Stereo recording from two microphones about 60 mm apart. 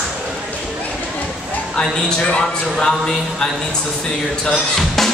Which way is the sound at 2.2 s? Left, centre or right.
Centre.